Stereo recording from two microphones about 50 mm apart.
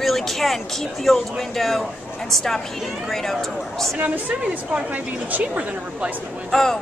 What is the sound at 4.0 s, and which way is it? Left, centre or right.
A woman's voice, right.